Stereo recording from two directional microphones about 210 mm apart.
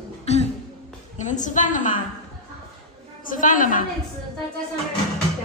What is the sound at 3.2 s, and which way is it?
Speech, 40° left (ahead or behind).